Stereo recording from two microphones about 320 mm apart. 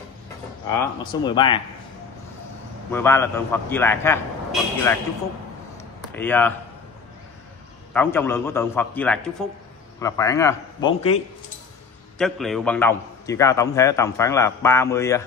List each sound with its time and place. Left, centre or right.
0.7 s a man's voice: centre
2.9 s a man's voice: centre
6.1 s a man's voice: centre
7.9 s a man's voice: centre
12.2 s a man's voice: centre